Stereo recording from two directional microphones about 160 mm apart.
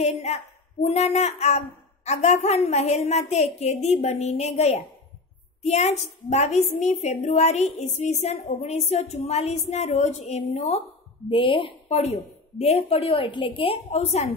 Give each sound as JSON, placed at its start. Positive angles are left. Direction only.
{"t": 0.0, "sound": "a woman's voice", "side_deg": 45}